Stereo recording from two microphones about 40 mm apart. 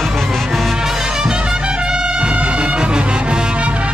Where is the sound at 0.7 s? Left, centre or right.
Centre.